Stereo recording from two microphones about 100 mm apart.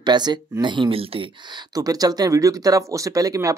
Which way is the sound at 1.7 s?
40° right (ahead or behind).